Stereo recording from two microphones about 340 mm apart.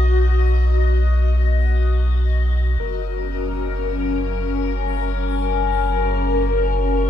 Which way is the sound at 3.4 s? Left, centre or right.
Left.